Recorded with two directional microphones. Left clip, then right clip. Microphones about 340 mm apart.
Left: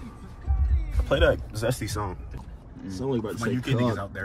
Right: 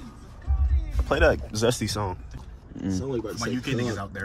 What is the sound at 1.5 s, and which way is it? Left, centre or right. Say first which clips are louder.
Speech: right 4 dB; right.